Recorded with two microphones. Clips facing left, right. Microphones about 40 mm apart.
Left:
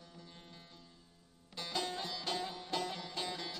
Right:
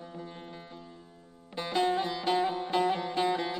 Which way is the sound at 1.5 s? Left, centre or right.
Right.